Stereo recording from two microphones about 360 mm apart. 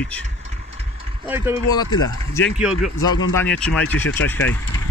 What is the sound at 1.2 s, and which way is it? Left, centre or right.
Speech, centre.